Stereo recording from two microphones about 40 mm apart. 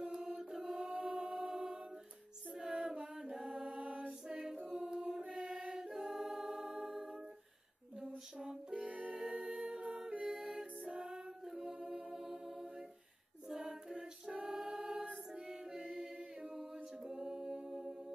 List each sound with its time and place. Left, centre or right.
0.0 s chant: centre
0.4 s mantra: centre
0.9 s music: right
3.3 s a capella: centre
4.6 s choir: centre
5.9 s music: centre
8.4 s music: centre
10.8 s music: right
11.4 s a capella: centre
11.8 s music: centre
13.5 s a capella: centre
13.9 s a capella: right
15.3 s music: centre